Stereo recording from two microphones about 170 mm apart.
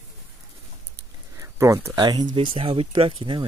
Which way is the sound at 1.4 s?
15° right (ahead or behind).